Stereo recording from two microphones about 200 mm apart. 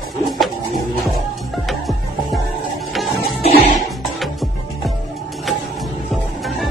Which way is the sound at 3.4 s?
35° left (ahead or behind).